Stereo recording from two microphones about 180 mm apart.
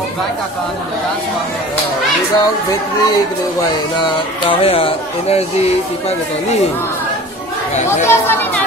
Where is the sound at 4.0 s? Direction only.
30° left (ahead or behind).